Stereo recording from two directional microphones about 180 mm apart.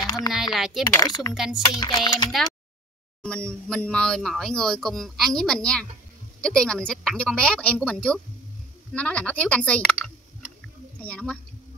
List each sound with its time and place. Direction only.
0.0 s a sound: 20° left (ahead or behind)
0.3 s speech: centre (ahead or behind)
1.0 s speech: 20° left (ahead or behind)
1.3 s speech: centre (ahead or behind)
1.8 s speech: 25° left (ahead or behind)
3.2 s a woman's voice: 5° left (ahead or behind)